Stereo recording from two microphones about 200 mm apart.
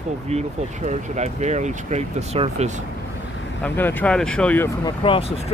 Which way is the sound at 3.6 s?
10° left (ahead or behind).